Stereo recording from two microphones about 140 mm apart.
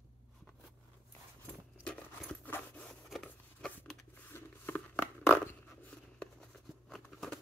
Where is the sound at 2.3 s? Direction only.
10° left (ahead or behind).